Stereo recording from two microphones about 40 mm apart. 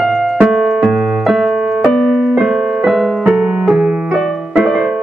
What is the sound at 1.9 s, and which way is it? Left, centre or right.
Keyboard, centre.